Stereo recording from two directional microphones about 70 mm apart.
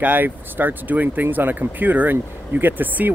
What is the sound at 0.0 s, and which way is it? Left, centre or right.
Speech, right.